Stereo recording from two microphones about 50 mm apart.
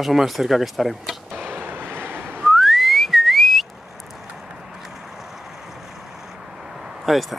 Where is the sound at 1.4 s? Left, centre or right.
Right.